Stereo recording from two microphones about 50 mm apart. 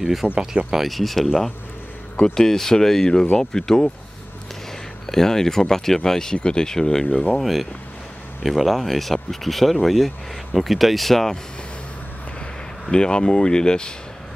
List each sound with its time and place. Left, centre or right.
0.0 s speech: centre
0.8 s speech: centre
2.1 s speech: centre
5.0 s speech: centre
7.3 s speech: centre
12.9 s speech: centre